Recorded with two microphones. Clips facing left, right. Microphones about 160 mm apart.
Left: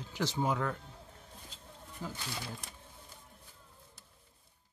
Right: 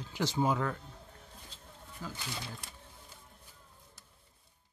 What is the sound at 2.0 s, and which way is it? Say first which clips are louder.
Speech: left 1 dB; 20° left (ahead or behind).